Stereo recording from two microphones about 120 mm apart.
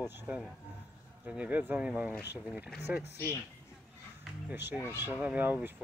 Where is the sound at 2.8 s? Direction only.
20° right (ahead or behind).